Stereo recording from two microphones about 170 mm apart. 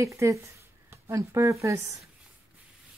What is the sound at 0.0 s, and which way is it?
Speech, 20° right (ahead or behind).